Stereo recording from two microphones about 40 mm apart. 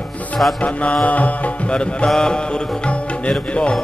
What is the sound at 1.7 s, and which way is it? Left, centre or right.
Music, left.